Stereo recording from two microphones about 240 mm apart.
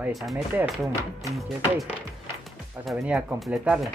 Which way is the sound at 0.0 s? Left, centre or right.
Centre.